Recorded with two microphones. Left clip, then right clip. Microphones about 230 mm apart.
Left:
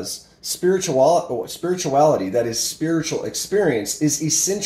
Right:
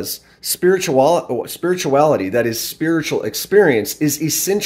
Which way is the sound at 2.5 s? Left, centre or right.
Right.